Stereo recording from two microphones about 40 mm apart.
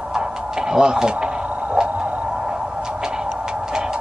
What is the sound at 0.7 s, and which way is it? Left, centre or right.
Speech, centre.